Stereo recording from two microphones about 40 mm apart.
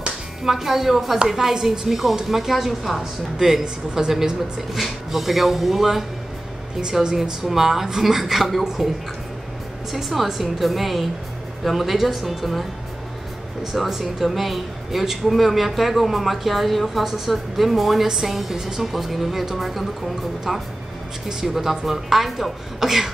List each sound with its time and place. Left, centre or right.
0.4 s a woman's voice: centre
3.6 s speech: right
4.7 s speech: centre
6.8 s a woman's voice: centre
7.4 s a woman's voice: centre
9.9 s speech: centre
13.7 s a woman's voice: centre